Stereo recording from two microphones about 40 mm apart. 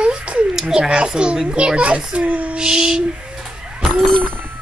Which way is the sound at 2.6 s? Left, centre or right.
Centre.